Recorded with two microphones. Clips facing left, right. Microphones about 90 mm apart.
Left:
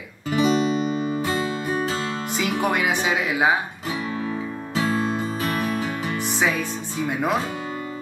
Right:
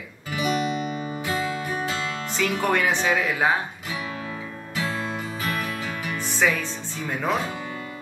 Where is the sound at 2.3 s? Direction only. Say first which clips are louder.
Even; 15° left (ahead or behind).